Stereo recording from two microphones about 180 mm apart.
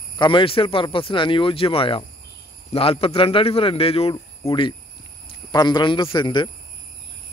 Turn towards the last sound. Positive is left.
turn(degrees=25)  # may be behind; listen again after turning